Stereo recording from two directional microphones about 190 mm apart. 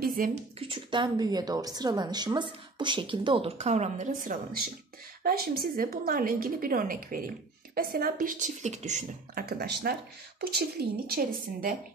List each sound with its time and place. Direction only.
0.0 s speech: 45° right (ahead or behind)
0.6 s a woman's voice: 25° right (ahead or behind); by 11.7 s 50° right (ahead or behind)